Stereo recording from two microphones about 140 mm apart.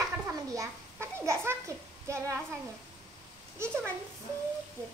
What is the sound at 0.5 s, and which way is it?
A child's voice, 20° right (ahead or behind).